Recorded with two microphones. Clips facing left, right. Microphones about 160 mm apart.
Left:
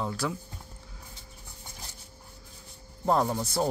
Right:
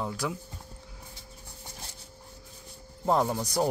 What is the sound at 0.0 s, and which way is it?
Speech, 15° right (ahead or behind).